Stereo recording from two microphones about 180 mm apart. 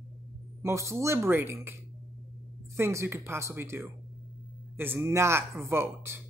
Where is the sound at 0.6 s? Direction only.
15° right (ahead or behind).